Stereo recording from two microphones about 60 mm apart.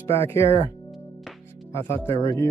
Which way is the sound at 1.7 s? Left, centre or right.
Left.